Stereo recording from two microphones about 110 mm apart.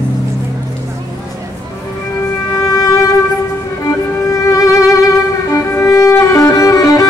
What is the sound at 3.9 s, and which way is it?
Music, 30° left (ahead or behind).